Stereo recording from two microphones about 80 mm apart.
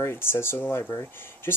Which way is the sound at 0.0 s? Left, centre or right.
Left.